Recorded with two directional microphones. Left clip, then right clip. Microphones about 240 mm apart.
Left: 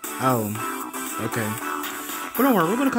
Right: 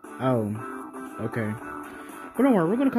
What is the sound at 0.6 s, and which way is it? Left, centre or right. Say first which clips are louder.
Music: left 7 dB; left.